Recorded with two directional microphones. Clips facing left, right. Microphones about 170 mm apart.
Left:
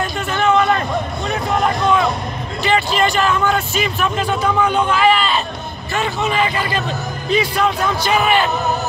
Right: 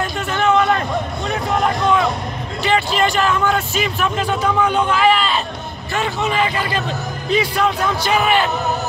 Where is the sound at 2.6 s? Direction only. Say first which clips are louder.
Left 1 dB; 15° left (ahead or behind).